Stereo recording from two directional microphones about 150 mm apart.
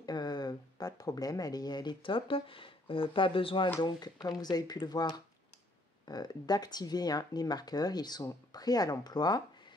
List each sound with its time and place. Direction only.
0.0 s speech: 30° left (ahead or behind)